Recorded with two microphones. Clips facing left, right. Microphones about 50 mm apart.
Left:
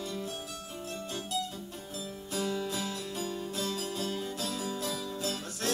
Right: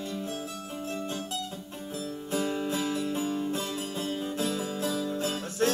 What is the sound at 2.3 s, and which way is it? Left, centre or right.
Music, right.